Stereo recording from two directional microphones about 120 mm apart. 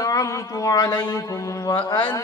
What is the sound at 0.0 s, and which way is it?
Speech, 30° left (ahead or behind).